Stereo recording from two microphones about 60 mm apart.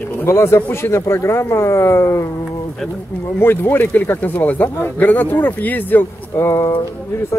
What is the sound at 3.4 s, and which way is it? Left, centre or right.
Speech, left.